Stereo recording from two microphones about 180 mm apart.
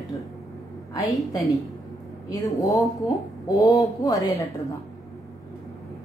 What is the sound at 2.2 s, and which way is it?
A woman's voice, 20° left (ahead or behind).